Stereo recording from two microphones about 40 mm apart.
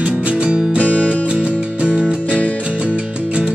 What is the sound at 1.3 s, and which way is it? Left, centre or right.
Music, right.